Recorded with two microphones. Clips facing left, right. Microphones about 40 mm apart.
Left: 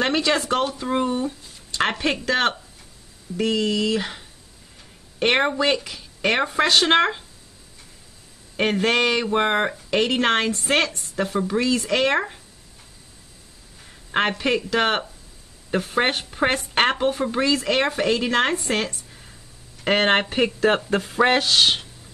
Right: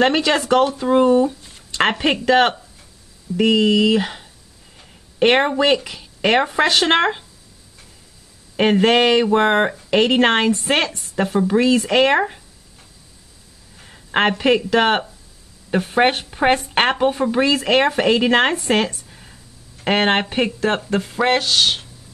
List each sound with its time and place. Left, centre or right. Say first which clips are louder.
0.1 s speech: right 4 dB; right
0.7 s a woman's voice: right 7 dB; right
2.1 s a woman's voice: right 6 dB; centre
5.2 s a woman's voice: right 4 dB; centre
8.5 s a woman's voice: right 5 dB; centre
13.8 s a woman's voice: right 4 dB; centre
19.8 s a woman's voice: right 2 dB; centre
20.6 s speech: even; centre